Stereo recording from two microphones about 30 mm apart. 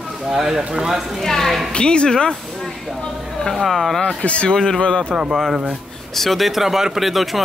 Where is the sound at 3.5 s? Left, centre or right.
Centre.